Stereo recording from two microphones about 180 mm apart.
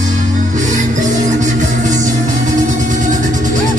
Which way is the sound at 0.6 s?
45° right (ahead or behind).